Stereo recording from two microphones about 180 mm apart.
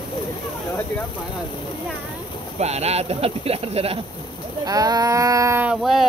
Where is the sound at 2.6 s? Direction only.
35° right (ahead or behind).